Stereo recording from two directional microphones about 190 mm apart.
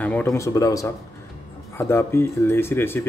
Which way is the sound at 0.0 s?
10° left (ahead or behind).